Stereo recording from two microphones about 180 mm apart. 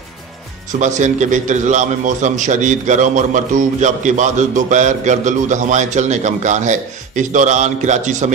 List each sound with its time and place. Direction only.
0.7 s a man's voice: 40° right (ahead or behind)